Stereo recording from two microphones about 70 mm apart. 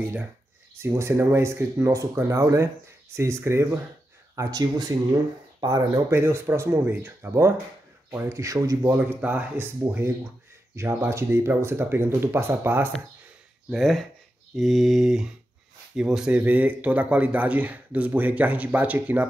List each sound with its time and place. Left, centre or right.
0.7 s speech: right
4.4 s speech: right
6.0 s speech: right
9.2 s speech: right
13.7 s mantra: centre
16.0 s speech: centre
16.3 s speech: right